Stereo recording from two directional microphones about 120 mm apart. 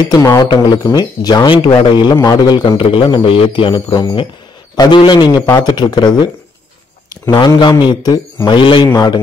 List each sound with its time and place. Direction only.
0.1 s a man's voice: 30° left (ahead or behind)
8.8 s speech: 30° left (ahead or behind)